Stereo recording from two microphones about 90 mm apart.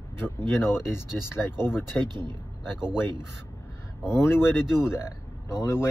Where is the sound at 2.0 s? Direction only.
55° right (ahead or behind).